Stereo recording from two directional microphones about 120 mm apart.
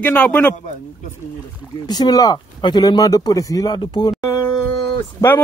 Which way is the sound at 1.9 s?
35° left (ahead or behind).